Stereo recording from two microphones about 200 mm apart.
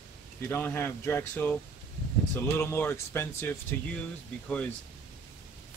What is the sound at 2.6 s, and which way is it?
Speech, 10° left (ahead or behind).